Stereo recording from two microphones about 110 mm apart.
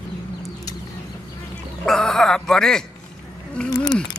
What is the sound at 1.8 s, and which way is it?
Speech, 5° left (ahead or behind).